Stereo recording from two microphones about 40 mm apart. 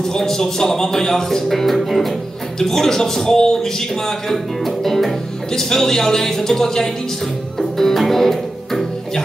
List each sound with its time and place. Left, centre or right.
0.0 s speech: centre
4.3 s speech: centre
7.5 s music: centre